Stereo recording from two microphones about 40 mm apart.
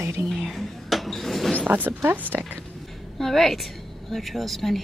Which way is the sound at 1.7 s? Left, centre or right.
Right.